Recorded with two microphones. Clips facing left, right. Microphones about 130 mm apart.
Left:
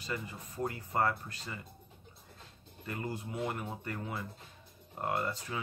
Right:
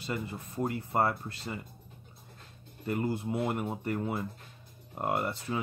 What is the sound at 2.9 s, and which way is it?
Speech, 25° right (ahead or behind).